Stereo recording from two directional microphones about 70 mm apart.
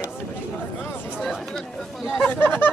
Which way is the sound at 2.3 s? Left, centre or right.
Left.